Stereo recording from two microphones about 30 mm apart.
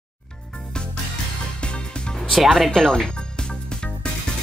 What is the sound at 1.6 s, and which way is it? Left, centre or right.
Music, left.